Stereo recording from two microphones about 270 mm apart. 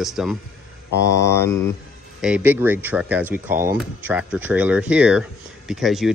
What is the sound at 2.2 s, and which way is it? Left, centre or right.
Speech, centre.